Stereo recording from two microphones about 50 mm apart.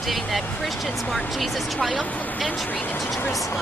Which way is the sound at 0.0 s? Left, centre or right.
Centre.